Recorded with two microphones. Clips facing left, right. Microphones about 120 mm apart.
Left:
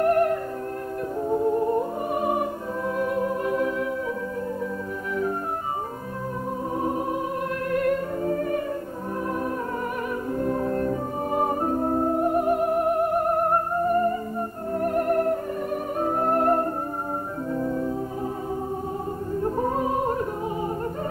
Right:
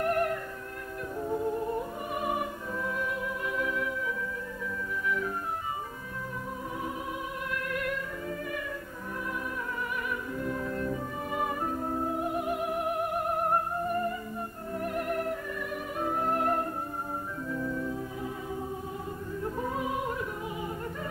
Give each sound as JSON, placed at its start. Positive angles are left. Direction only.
{"t": 0.0, "sound": "music", "side_deg": 40}
{"t": 7.7, "sound": "music", "side_deg": 40}
{"t": 10.3, "sound": "music", "side_deg": 40}
{"t": 17.6, "sound": "organ", "side_deg": 40}
{"t": 19.4, "sound": "opera", "side_deg": 45}